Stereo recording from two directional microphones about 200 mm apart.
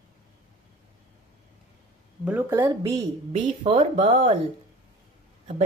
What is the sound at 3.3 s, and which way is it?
Speech, 25° right (ahead or behind).